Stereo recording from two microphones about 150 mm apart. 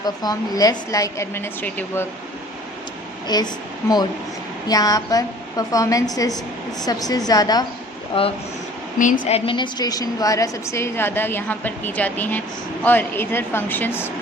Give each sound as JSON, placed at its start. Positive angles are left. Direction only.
{"t": 0.0, "sound": "a woman's voice", "side_deg": 25}
{"t": 3.3, "sound": "a woman's voice", "side_deg": 25}
{"t": 4.6, "sound": "a woman's voice", "side_deg": 25}
{"t": 8.1, "sound": "speech", "side_deg": 35}
{"t": 8.9, "sound": "a woman's voice", "side_deg": 60}
{"t": 9.5, "sound": "a woman's voice", "side_deg": 30}